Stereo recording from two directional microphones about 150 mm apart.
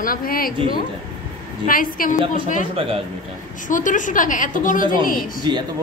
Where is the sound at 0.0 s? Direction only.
75° left (ahead or behind).